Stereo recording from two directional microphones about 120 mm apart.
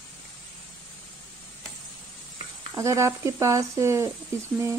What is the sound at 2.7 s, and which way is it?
Speech, 25° right (ahead or behind).